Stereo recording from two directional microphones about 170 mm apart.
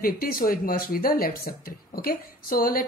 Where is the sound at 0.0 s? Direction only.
60° left (ahead or behind).